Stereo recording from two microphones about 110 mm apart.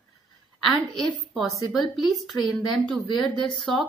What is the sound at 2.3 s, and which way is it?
Speech, 35° left (ahead or behind).